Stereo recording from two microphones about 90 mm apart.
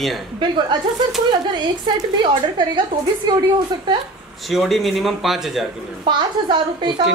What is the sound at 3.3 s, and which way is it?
Speech, 55° right (ahead or behind).